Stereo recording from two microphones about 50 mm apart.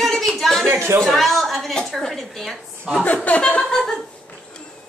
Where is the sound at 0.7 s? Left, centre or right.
Right.